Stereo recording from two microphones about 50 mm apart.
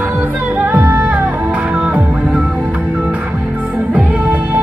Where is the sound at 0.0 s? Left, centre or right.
Right.